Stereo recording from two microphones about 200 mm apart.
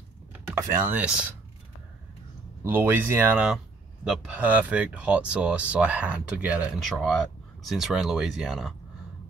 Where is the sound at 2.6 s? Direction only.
10° right (ahead or behind).